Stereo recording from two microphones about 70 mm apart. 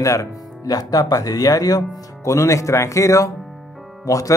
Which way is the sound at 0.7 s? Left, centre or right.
Left.